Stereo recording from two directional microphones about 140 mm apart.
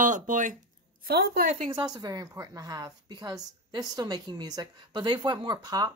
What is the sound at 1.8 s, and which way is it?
A woman's voice, 30° right (ahead or behind).